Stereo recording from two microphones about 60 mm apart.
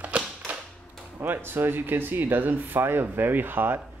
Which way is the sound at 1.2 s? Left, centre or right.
Right.